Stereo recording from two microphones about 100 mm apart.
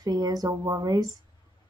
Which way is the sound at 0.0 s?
40° right (ahead or behind).